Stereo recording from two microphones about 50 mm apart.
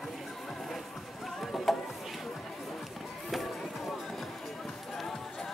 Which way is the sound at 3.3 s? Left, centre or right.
Centre.